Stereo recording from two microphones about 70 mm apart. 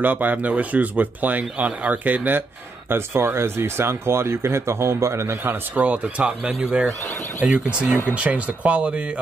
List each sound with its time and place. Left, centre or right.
0.0 s speech: right